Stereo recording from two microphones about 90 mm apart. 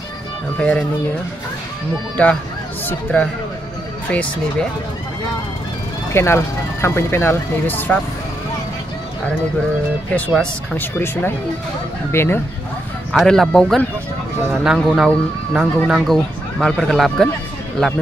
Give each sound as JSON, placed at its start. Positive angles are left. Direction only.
{"t": 0.6, "sound": "speech", "side_deg": 15}
{"t": 2.2, "sound": "speech", "side_deg": 15}
{"t": 6.1, "sound": "speech", "side_deg": 30}
{"t": 10.3, "sound": "speech", "side_deg": 10}
{"t": 10.8, "sound": "speech", "side_deg": 25}
{"t": 13.2, "sound": "speech", "side_deg": 5}
{"t": 14.5, "sound": "speech", "side_deg": -5}